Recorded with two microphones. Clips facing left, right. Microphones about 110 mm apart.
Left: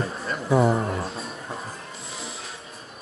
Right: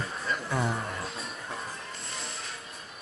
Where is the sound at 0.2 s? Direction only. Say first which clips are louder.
Left 8 dB; centre (ahead or behind).